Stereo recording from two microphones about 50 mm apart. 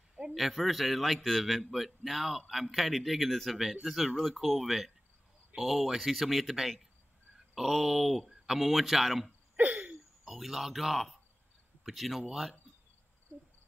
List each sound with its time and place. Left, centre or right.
0.3 s a man's voice: centre
9.6 s a sound: right
10.2 s a man's voice: centre